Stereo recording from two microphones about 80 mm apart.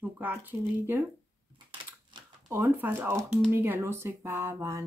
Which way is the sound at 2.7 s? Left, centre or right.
Right.